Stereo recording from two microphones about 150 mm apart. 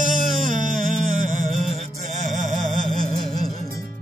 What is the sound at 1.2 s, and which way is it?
Music, 60° right (ahead or behind).